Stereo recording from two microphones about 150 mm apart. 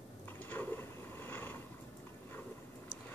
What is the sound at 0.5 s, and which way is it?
Vehicle, 15° left (ahead or behind).